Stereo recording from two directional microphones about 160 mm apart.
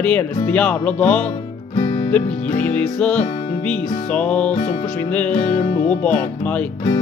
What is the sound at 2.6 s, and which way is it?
Music, 5° left (ahead or behind).